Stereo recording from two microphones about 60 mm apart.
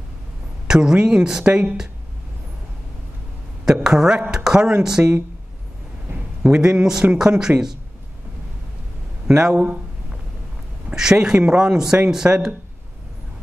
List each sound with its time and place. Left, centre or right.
0.7 s speech: centre
1.4 s a woman's voice: right
3.6 s speech: centre
6.4 s speech: centre
9.3 s speech: centre
11.0 s speech: centre